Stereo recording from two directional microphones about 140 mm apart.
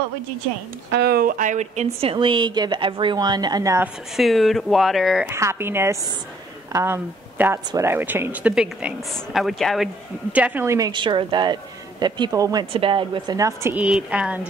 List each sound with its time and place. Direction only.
1.1 s a woman's voice: 80° right; by 3.8 s 25° right (ahead or behind)
3.8 s speech: centre (ahead or behind)
5.3 s speech: 20° right (ahead or behind); by 9.8 s centre (ahead or behind)
10.3 s speech: 10° right (ahead or behind)
10.9 s a woman's voice: 35° right (ahead or behind)
12.7 s a woman's voice: 40° right (ahead or behind)
13.4 s a man's voice: 20° right (ahead or behind)
13.7 s speech: 5° right (ahead or behind)